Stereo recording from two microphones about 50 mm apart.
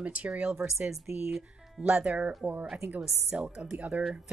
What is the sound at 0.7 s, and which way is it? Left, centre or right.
A woman's voice, centre.